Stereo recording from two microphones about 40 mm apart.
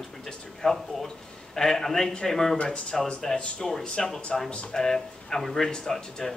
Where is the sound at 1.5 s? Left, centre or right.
Centre.